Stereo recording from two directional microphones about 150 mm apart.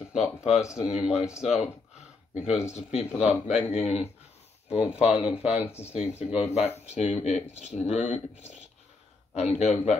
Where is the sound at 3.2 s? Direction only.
45° left (ahead or behind).